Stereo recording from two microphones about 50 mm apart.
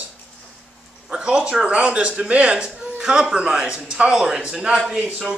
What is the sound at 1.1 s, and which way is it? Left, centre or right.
A man's voice, centre.